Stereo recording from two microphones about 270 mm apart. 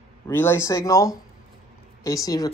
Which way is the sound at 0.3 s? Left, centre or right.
Centre.